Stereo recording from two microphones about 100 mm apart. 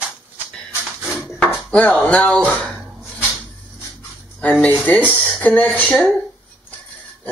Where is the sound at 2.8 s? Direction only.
5° right (ahead or behind).